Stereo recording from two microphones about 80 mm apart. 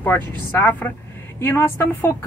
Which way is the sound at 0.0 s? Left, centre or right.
Left.